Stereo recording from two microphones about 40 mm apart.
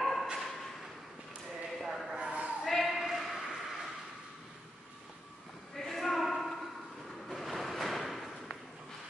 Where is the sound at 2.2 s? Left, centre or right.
Right.